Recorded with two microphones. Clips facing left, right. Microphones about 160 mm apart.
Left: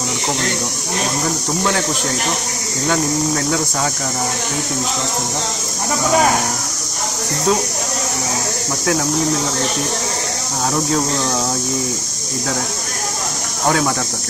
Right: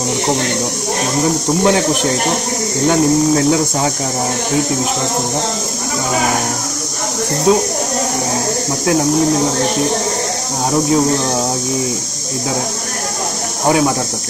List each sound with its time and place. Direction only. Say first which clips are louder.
1.6 s speech: right 7 dB; 20° right (ahead or behind)
7.5 s speech: right 5 dB; 15° right (ahead or behind)
13.7 s speech: right 4 dB; 20° right (ahead or behind)